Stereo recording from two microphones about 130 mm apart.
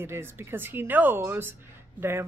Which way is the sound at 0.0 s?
20° right (ahead or behind).